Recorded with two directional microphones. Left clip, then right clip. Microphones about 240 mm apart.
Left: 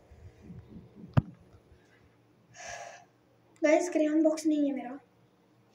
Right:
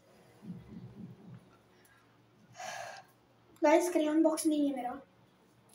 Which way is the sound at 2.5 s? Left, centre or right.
Left.